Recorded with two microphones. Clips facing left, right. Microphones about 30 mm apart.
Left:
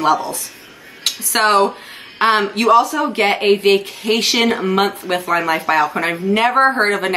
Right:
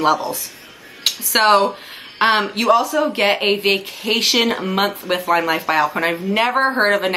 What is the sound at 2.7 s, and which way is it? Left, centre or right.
Speech, centre.